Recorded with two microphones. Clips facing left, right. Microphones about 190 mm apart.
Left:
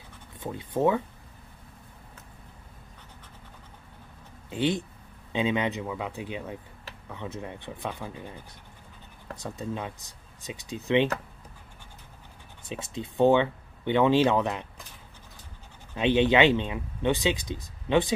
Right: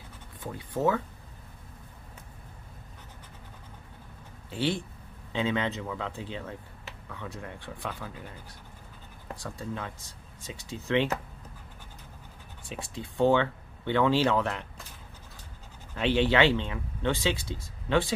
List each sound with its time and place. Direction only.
0.4 s speech: 20° left (ahead or behind)
4.5 s speech: 20° left (ahead or behind)
9.4 s speech: 20° left (ahead or behind)
12.6 s speech: 20° left (ahead or behind)
15.9 s speech: 20° left (ahead or behind)